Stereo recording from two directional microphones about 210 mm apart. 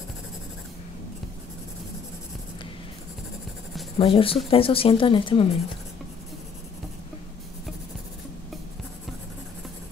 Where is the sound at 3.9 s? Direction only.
25° left (ahead or behind).